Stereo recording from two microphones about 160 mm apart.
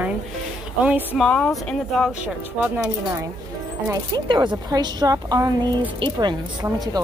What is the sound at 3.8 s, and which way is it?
Speech, 25° right (ahead or behind).